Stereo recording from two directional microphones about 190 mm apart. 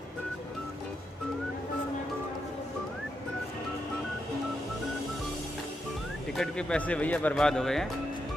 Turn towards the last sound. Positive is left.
turn(degrees=0)  # may be behind; listen again after turning